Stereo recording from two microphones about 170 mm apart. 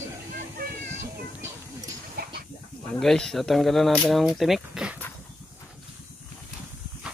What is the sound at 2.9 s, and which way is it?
Speech, 5° left (ahead or behind).